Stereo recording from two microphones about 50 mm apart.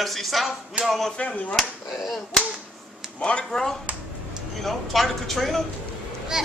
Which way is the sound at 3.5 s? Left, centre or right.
Centre.